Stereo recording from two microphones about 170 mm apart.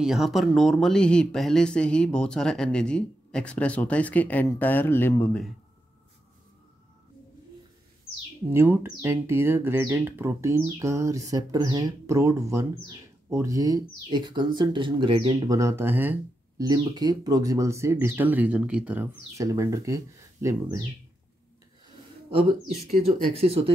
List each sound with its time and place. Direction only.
0.0 s speech: centre (ahead or behind)
8.5 s speech: 15° right (ahead or behind); by 15.3 s 30° right (ahead or behind)
15.4 s speech: 20° right (ahead or behind)
19.3 s speech: 20° right (ahead or behind)
22.3 s speech: 35° right (ahead or behind)